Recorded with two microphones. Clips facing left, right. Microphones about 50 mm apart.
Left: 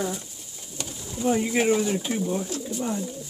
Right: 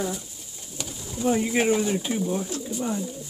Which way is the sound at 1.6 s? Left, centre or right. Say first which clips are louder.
Even; centre.